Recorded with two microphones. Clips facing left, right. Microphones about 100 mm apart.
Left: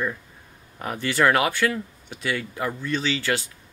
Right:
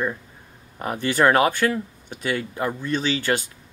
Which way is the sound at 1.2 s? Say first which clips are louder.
Right 2 dB; 35° right (ahead or behind).